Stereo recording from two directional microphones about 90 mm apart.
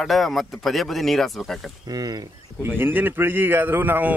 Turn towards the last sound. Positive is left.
turn(degrees=-20)  # may be behind; listen again after turning